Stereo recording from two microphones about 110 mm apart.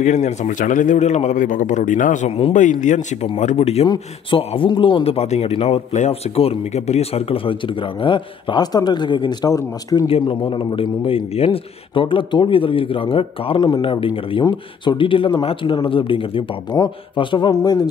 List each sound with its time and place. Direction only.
0.0 s a man's voice: 90° left; by 3.3 s 70° left (ahead or behind)
3.3 s speech: 80° left
3.8 s speech: 50° left (ahead or behind)
5.0 s speech: 70° left (ahead or behind); by 9.5 s 45° left (ahead or behind)
9.5 s a man's voice: 30° left (ahead or behind)
10.0 s speech: 50° left (ahead or behind)
13.6 s speech: 45° left (ahead or behind)
16.7 s a man's voice: 40° left (ahead or behind)